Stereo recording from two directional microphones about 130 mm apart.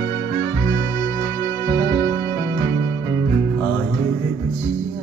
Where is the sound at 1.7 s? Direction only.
30° left (ahead or behind).